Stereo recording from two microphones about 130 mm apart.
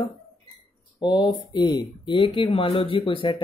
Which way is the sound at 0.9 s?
35° left (ahead or behind).